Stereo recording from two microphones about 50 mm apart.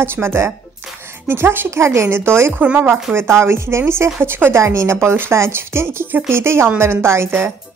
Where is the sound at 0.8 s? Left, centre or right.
Right.